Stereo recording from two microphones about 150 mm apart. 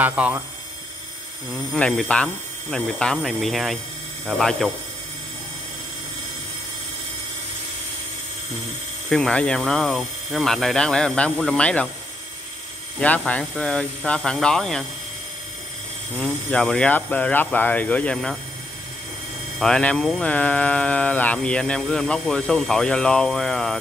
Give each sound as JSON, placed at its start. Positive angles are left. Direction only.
{"t": 0.0, "sound": "speech", "side_deg": -10}
{"t": 1.7, "sound": "speech", "side_deg": 5}
{"t": 9.1, "sound": "speech", "side_deg": 5}
{"t": 13.0, "sound": "speech", "side_deg": 10}
{"t": 16.2, "sound": "speech", "side_deg": 5}
{"t": 19.6, "sound": "speech", "side_deg": 5}